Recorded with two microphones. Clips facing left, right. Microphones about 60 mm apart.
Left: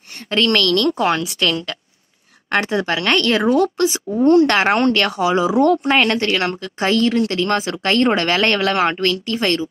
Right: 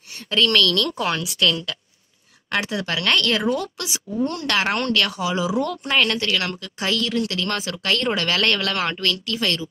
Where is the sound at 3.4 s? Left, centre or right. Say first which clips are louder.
Left 9 dB; left.